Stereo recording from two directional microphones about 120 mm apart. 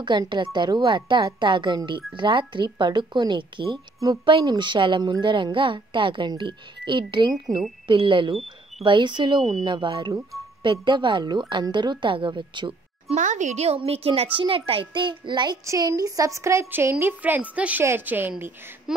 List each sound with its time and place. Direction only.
0.0 s a woman's voice: 40° right (ahead or behind)
13.1 s a woman's voice: 90° right; by 13.7 s 70° right (ahead or behind)
13.7 s a woman's voice: 55° right (ahead or behind); by 15.6 s 40° right (ahead or behind)
15.6 s child singing: 25° right (ahead or behind)
16.9 s a woman's voice: 15° right (ahead or behind)
18.9 s a sound: 5° right (ahead or behind)